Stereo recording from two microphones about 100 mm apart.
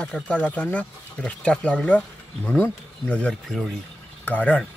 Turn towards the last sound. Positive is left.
turn(degrees=15)  # may be behind; listen again after turning